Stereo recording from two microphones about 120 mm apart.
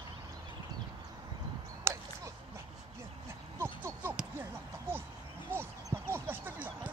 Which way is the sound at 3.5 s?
20° right (ahead or behind).